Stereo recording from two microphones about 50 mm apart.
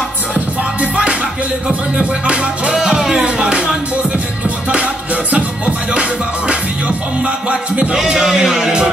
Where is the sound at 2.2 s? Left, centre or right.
Centre.